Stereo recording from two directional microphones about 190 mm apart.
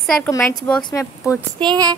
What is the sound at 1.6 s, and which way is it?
Speech, 20° right (ahead or behind).